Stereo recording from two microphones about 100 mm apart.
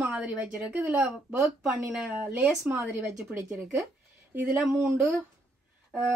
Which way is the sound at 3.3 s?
25° right (ahead or behind).